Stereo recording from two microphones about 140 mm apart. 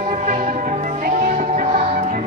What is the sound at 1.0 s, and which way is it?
Music, 70° right (ahead or behind).